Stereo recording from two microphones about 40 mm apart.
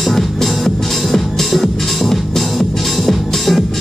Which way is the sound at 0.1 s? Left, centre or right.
Centre.